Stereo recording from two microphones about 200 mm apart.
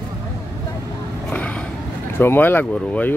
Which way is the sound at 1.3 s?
5° left (ahead or behind).